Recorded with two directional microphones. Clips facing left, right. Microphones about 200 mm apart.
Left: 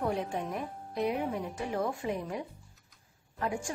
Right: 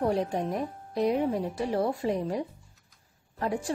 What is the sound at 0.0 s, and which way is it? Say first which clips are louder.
A woman's voice: right 5 dB; 35° right (ahead or behind).